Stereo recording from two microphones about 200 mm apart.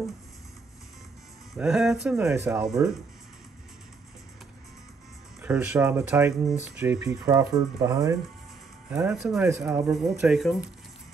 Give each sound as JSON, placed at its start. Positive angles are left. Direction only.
{"t": 1.5, "sound": "speech", "side_deg": 0}
{"t": 5.4, "sound": "speech", "side_deg": -10}
{"t": 8.9, "sound": "speech", "side_deg": -5}